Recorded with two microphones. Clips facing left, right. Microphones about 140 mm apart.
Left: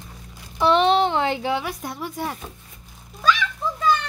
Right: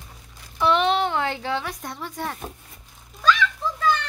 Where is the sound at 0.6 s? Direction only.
30° left (ahead or behind); by 2.3 s 10° left (ahead or behind).